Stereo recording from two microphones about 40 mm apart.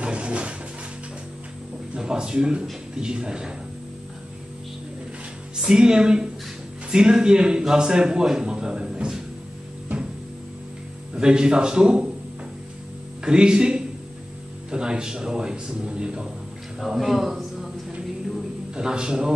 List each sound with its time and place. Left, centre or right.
0.0 s music: right
2.0 s speech: centre
5.7 s a man's voice: centre
11.1 s speech: right
13.2 s speech: right
16.8 s a man's voice: centre
18.8 s speech: centre